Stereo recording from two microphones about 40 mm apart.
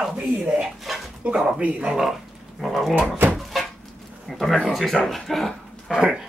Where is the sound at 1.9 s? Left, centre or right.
Centre.